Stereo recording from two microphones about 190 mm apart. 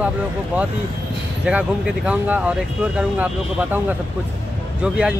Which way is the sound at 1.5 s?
5° right (ahead or behind).